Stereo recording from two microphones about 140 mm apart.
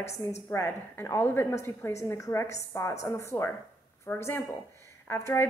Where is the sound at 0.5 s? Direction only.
15° left (ahead or behind).